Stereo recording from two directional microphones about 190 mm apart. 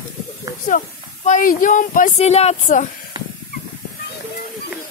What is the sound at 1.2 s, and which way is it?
Speech, 45° left (ahead or behind).